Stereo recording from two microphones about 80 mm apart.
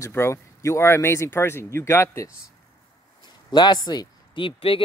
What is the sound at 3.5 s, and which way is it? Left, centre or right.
Speech, left.